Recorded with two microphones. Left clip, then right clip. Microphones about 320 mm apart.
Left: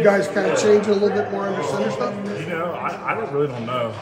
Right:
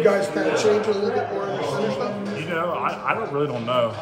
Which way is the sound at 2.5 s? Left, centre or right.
Centre.